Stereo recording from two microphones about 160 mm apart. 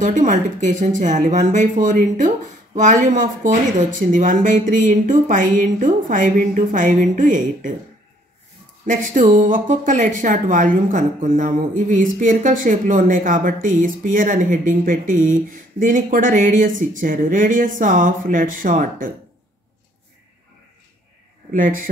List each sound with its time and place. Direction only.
0.0 s speech: 55° right (ahead or behind)
8.8 s speech: 55° right (ahead or behind)
21.5 s speech: 55° right (ahead or behind)